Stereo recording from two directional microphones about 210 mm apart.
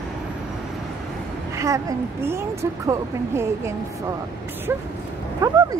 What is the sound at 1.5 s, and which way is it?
A woman's voice, 15° right (ahead or behind).